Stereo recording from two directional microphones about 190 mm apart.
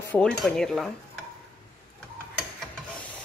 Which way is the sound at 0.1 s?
5° left (ahead or behind).